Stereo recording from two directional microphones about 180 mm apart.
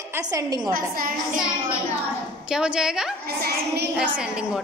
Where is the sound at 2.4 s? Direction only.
5° right (ahead or behind).